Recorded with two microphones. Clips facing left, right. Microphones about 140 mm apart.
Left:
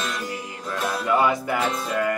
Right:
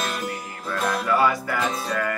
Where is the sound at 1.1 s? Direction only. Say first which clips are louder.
Left 2 dB; 20° left (ahead or behind).